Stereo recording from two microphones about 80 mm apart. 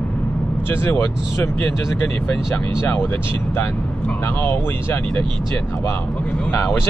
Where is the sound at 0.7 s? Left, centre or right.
Left.